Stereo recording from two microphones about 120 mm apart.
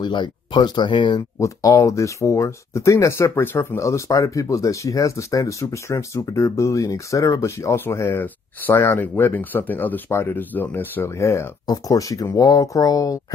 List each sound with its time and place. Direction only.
0.0 s speech: 40° left (ahead or behind)
1.4 s speech: 25° left (ahead or behind)